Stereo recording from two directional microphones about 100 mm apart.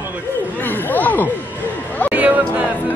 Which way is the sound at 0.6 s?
20° left (ahead or behind).